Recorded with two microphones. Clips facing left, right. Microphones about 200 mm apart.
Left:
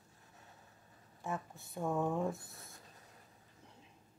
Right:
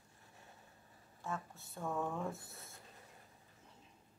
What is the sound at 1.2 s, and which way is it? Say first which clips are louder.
Speech: left 3 dB; 15° left (ahead or behind).